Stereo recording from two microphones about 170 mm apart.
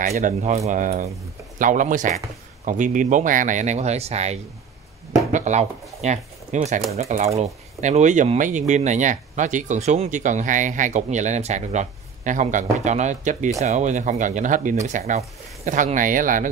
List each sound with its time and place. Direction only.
0.0 s speech: 45° right (ahead or behind)